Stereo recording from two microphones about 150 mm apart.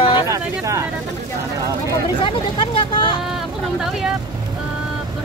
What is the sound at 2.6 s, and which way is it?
Vehicle, 35° left (ahead or behind).